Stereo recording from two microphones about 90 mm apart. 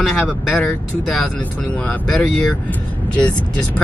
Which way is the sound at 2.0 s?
10° left (ahead or behind).